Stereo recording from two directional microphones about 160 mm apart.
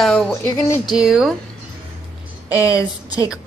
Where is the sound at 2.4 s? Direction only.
20° left (ahead or behind).